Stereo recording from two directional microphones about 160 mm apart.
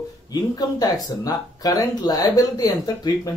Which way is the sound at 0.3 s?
25° left (ahead or behind).